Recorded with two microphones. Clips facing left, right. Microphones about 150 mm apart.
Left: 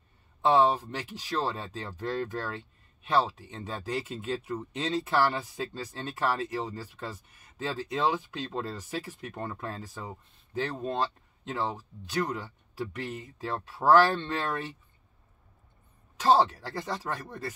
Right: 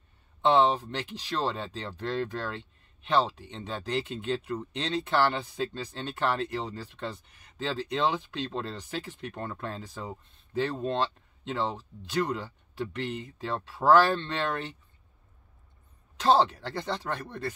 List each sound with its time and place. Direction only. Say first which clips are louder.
0.4 s speech: even; centre (ahead or behind)
16.2 s speech: even; centre (ahead or behind)